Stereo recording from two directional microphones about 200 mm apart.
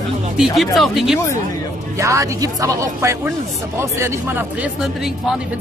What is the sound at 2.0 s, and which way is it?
Speech, 15° right (ahead or behind).